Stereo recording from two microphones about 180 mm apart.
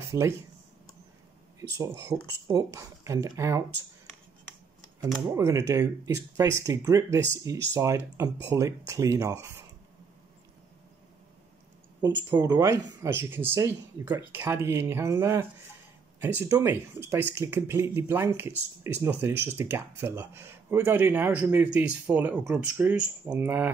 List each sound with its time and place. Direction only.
1.6 s speech: 15° right (ahead or behind)
5.2 s speech: 15° right (ahead or behind)
12.3 s speech: 20° right (ahead or behind)